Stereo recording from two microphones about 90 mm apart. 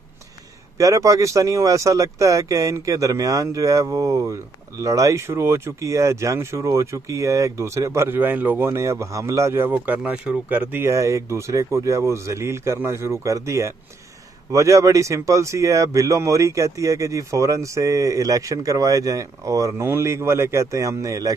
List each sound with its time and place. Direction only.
0.7 s speech: 35° right (ahead or behind)
9.7 s speech: 20° right (ahead or behind); by 21.4 s 40° right (ahead or behind)